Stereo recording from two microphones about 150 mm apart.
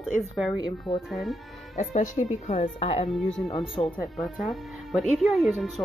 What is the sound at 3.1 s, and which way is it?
Speech, centre (ahead or behind).